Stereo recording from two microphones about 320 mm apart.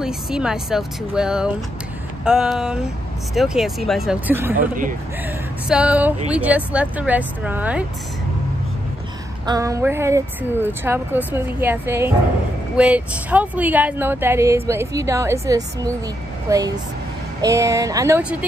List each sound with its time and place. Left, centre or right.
0.0 s speech: centre
4.6 s speech: right
5.7 s speech: centre
9.5 s speech: centre